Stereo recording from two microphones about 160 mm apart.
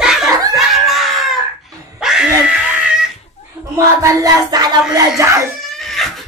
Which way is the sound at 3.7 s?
20° right (ahead or behind).